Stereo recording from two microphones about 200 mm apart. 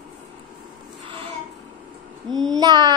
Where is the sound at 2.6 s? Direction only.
20° right (ahead or behind).